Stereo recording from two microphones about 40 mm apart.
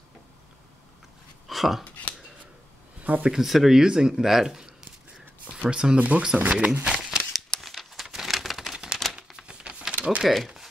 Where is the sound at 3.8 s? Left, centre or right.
Centre.